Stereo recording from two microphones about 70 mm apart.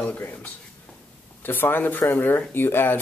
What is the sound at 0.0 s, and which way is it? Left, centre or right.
Speech, left.